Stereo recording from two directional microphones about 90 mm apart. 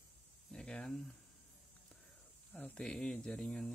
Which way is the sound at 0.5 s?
10° left (ahead or behind).